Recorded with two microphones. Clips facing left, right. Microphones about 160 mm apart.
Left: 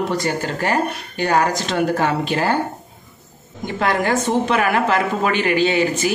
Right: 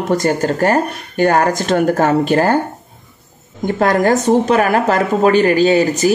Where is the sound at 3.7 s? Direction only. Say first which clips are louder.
Right 6 dB; 45° right (ahead or behind).